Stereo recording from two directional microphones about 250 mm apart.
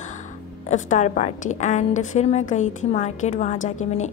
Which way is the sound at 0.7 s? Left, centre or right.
Left.